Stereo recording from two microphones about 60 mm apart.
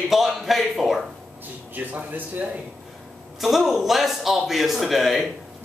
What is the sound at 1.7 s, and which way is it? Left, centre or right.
Speech, right.